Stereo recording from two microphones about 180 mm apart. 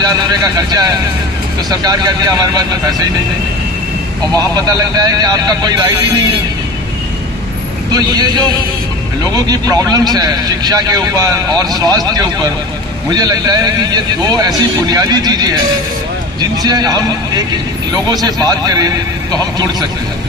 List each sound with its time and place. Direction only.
0.0 s speech: 20° right (ahead or behind)
4.4 s speech: 20° right (ahead or behind)
7.9 s speech: 20° right (ahead or behind)